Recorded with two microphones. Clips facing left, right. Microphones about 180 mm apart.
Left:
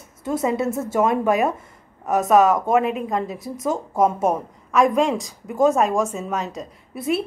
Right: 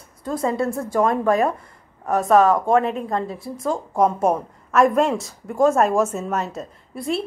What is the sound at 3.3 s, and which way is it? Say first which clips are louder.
Speech: left 1 dB; 45° left (ahead or behind).